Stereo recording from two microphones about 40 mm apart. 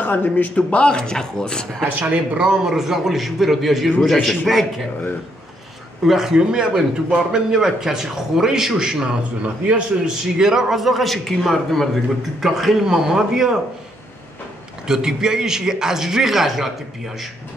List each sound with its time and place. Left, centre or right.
0.0 s a man's voice: left
0.6 s a man's voice: left
2.0 s speech: right
2.6 s a man's voice: centre
6.0 s a man's voice: centre
12.4 s a man's voice: centre
14.9 s a man's voice: centre